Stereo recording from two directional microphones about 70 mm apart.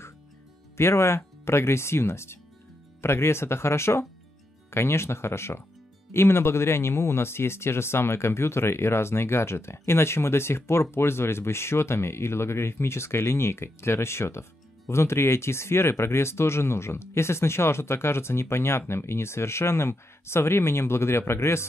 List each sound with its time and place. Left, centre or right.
0.7 s speech: left